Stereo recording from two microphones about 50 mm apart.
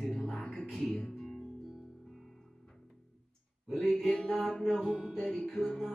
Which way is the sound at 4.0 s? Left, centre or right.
Centre.